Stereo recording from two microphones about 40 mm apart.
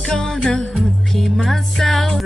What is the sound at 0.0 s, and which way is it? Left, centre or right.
Jingle bell, centre.